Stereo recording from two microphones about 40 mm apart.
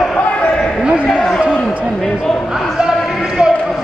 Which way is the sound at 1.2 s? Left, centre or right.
Centre.